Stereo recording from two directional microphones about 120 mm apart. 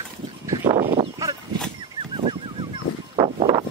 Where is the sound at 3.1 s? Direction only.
45° right (ahead or behind).